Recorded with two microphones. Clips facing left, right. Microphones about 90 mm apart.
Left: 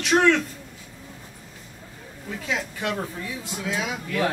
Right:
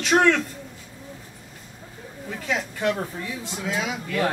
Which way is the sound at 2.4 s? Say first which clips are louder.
Right 3 dB; centre (ahead or behind).